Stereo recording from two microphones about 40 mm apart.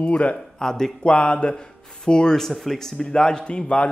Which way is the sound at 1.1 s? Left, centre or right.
Left.